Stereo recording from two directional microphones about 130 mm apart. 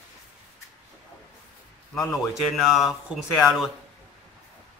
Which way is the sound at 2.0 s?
Centre (ahead or behind).